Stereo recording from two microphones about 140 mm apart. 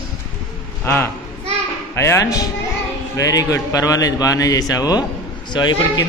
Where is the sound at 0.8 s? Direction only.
20° left (ahead or behind).